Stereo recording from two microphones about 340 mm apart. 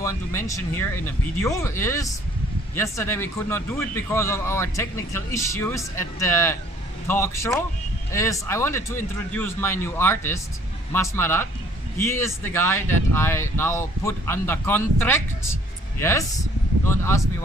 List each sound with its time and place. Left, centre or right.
0.0 s a man's voice: centre